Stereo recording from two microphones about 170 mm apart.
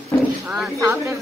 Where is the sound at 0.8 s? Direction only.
15° right (ahead or behind).